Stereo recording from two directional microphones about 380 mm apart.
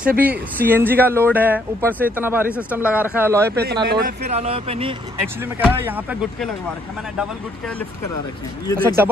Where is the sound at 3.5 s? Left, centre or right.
Right; by 6.5 s centre.